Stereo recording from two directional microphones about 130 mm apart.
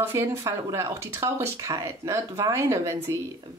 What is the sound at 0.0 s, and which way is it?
Speech, 20° right (ahead or behind).